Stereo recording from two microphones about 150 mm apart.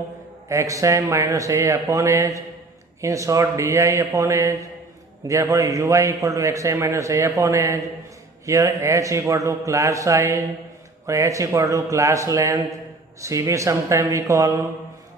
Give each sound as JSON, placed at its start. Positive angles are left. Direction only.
{"t": 0.5, "sound": "a man's voice", "side_deg": -20}